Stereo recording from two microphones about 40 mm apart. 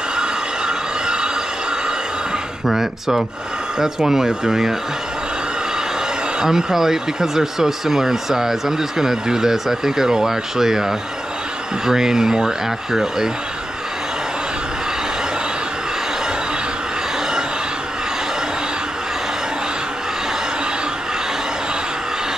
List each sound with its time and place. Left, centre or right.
0.1 s train: centre
2.6 s speech: centre
6.4 s speech: centre